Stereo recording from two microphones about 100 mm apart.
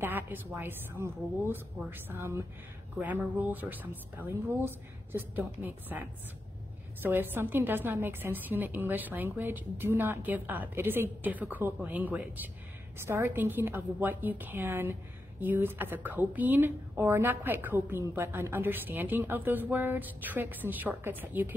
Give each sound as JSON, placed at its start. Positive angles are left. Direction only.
{"t": 0.0, "sound": "a woman's voice", "side_deg": -20}